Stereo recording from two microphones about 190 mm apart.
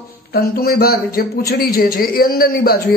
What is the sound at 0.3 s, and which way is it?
A woman's voice, 55° left (ahead or behind).